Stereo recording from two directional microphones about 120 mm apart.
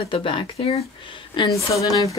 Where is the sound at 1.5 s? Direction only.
30° left (ahead or behind).